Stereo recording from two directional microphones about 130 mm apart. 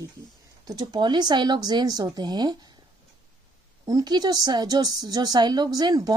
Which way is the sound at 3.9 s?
30° right (ahead or behind).